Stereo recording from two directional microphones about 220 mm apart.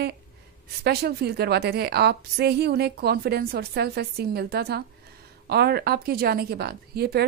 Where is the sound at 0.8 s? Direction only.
45° right (ahead or behind).